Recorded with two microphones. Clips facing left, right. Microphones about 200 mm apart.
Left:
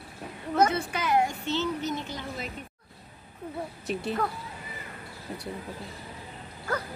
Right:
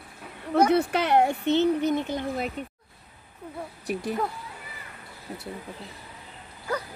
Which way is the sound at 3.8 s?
15° right (ahead or behind).